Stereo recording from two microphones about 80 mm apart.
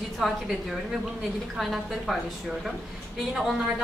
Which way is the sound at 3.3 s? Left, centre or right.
Centre.